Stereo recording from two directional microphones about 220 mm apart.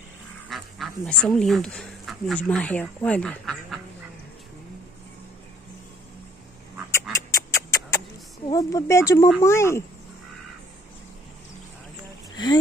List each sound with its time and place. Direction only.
0.5 s speech: centre (ahead or behind)
6.9 s duck: 15° left (ahead or behind)
8.5 s speech: 15° left (ahead or behind)